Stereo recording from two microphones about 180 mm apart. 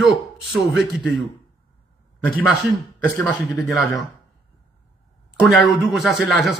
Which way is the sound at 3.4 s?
Centre (ahead or behind).